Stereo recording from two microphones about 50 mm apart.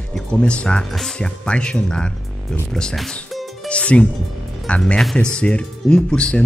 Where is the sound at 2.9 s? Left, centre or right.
Centre.